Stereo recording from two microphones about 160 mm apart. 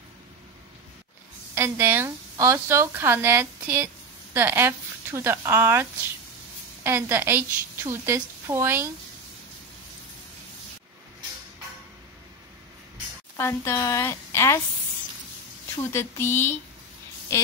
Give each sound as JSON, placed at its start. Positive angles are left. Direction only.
{"t": 1.5, "sound": "a woman's voice", "side_deg": -15}
{"t": 13.4, "sound": "a woman's voice", "side_deg": 15}
{"t": 15.8, "sound": "a woman's voice", "side_deg": 15}